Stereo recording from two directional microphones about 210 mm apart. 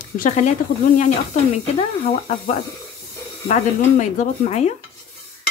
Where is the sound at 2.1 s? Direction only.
30° left (ahead or behind).